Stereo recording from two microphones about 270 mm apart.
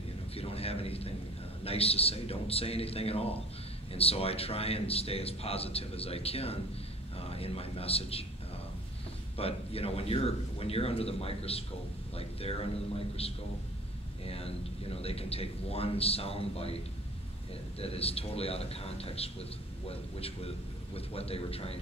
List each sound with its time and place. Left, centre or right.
0.3 s a man's voice: left
9.4 s speech: left
17.7 s speech: left